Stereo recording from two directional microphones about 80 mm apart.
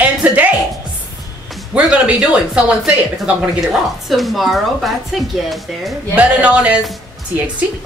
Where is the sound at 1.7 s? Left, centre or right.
Centre.